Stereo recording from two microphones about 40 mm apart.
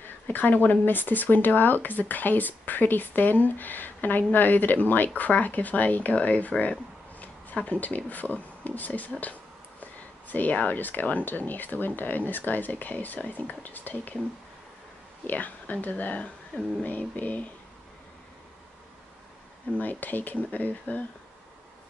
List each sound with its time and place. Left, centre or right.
0.3 s speech: left
15.2 s speech: left
19.8 s speech: left